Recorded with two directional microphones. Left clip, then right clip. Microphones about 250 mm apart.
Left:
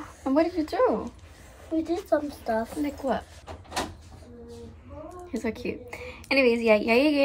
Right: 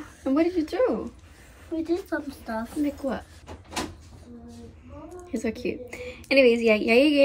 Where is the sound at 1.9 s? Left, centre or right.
Left.